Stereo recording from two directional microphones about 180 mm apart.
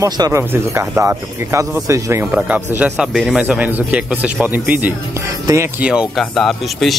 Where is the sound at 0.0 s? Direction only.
15° right (ahead or behind).